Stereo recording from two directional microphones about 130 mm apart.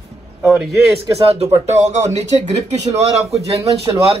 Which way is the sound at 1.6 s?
65° right (ahead or behind).